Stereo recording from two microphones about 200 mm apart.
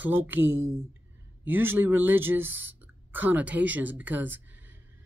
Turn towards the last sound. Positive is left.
turn(degrees=-10)  # may be behind; listen again after turning